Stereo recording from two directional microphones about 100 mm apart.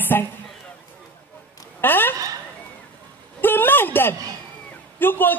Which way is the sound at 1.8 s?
20° left (ahead or behind).